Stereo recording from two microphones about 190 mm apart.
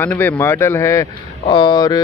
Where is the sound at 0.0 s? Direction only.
10° left (ahead or behind).